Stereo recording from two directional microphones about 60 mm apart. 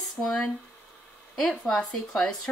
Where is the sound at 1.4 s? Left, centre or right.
Centre.